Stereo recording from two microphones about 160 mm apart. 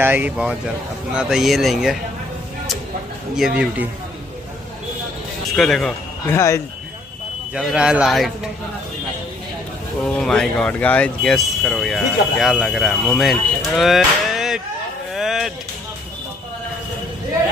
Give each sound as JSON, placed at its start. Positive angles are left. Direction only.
{"t": 0.0, "sound": "speech", "side_deg": -10}
{"t": 3.3, "sound": "speech", "side_deg": -5}
{"t": 5.6, "sound": "speech", "side_deg": 5}
{"t": 6.3, "sound": "speech", "side_deg": 15}
{"t": 7.5, "sound": "speech", "side_deg": -5}
{"t": 10.0, "sound": "speech", "side_deg": 5}
{"t": 15.1, "sound": "a sound", "side_deg": 0}